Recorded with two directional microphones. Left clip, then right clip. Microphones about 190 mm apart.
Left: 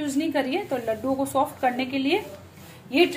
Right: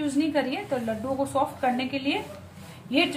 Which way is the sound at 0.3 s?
35° left (ahead or behind).